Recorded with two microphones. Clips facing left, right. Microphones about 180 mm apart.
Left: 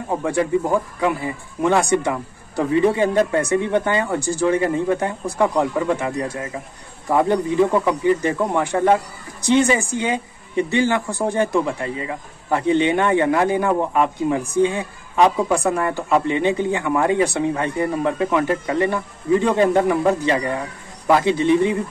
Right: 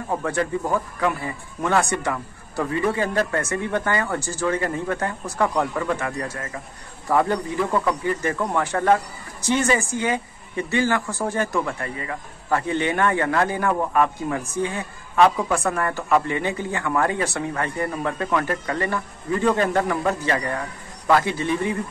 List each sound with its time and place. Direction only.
0.1 s a man's voice: 15° left (ahead or behind)